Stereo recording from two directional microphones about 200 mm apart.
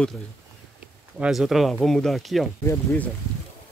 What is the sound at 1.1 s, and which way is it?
Speech, 5° right (ahead or behind).